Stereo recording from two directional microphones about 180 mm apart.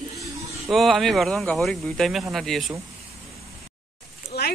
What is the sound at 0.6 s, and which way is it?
Speech, centre (ahead or behind).